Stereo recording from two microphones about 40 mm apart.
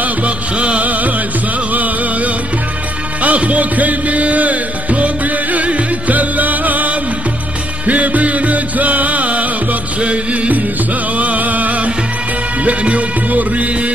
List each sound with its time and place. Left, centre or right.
0.0 s music: right